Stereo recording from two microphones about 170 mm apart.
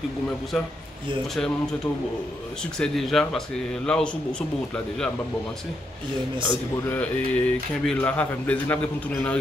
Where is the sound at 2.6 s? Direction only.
5° left (ahead or behind).